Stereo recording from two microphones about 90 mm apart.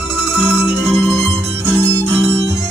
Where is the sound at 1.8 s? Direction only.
25° right (ahead or behind).